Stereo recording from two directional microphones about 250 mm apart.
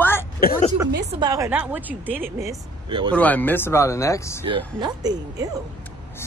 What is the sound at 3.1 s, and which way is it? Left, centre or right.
Speech, centre.